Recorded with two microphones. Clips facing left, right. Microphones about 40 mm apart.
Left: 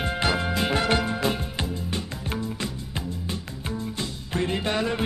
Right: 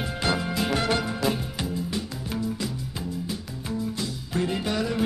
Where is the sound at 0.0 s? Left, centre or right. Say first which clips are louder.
Left 2 dB; left.